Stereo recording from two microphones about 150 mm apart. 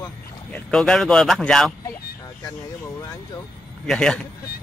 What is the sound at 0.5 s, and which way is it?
Speech, 5° left (ahead or behind).